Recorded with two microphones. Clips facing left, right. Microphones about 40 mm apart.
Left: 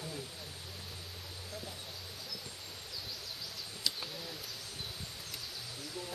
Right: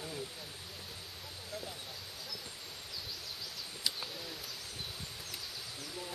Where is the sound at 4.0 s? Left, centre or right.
Centre.